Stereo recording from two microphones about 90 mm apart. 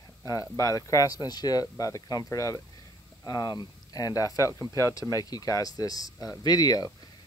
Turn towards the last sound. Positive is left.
turn(degrees=45)  # may be behind; listen again after turning